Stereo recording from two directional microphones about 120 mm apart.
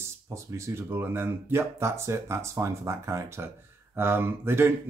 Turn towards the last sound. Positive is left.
turn(degrees=-20)  # may be behind; listen again after turning